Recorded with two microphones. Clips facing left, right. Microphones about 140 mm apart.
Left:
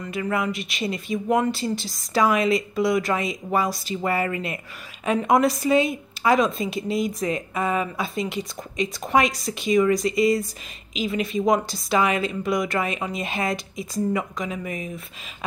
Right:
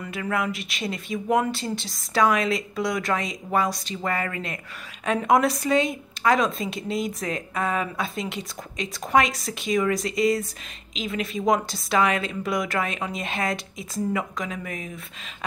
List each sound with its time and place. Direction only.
0.0 s speech: centre (ahead or behind)